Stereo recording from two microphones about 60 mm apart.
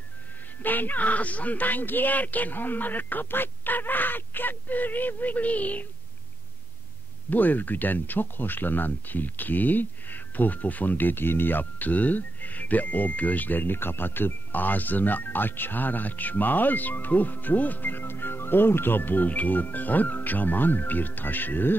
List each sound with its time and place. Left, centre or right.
0.6 s speech: left
7.2 s speech: left